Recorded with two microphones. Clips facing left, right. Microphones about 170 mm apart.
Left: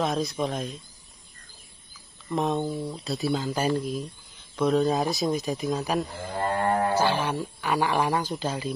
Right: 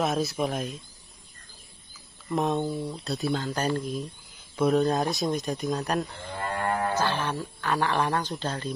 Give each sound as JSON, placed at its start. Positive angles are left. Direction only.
{"t": 0.0, "sound": "speech", "side_deg": -5}
{"t": 2.2, "sound": "speech", "side_deg": 0}
{"t": 4.6, "sound": "speech", "side_deg": -5}
{"t": 6.3, "sound": "cattle", "side_deg": 30}
{"t": 6.9, "sound": "speech", "side_deg": 10}